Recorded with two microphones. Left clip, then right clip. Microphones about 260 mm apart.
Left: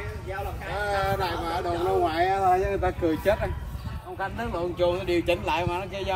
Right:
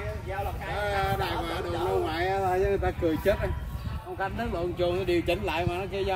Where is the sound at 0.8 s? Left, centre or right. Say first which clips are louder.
Left 2 dB; centre.